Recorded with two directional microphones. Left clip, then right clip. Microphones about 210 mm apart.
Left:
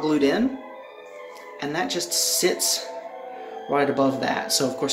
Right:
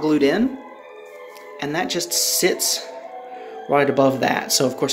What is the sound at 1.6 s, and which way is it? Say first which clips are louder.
Speech: right 3 dB; 30° right (ahead or behind).